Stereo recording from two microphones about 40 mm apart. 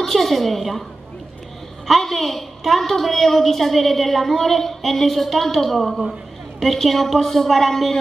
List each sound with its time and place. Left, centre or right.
0.0 s a woman's voice: centre
1.9 s a woman's voice: centre